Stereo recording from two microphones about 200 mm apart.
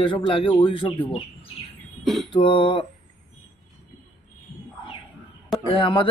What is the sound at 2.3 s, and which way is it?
Speech, 25° left (ahead or behind).